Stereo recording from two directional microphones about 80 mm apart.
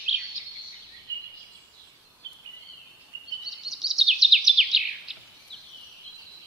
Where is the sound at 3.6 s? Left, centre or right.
Centre.